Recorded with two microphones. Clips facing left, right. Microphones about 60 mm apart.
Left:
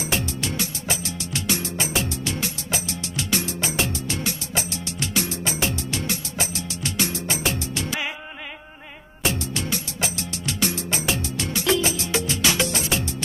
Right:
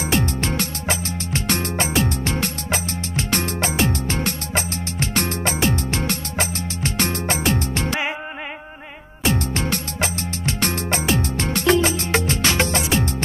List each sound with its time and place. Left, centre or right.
0.0 s music: right
5.6 s music: right
9.2 s music: right